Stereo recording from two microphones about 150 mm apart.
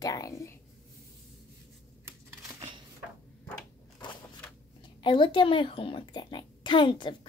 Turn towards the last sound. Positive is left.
turn(degrees=35)  # may be behind; listen again after turning